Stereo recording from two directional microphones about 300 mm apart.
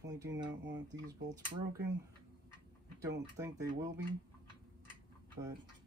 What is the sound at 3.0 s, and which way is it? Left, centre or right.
Speech, centre.